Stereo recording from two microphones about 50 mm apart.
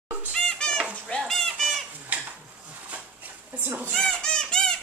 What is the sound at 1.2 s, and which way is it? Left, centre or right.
Goat, centre.